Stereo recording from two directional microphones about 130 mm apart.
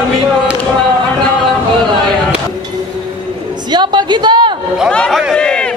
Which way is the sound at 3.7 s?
35° right (ahead or behind).